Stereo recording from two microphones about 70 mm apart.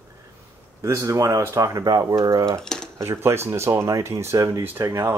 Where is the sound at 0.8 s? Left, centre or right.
Right.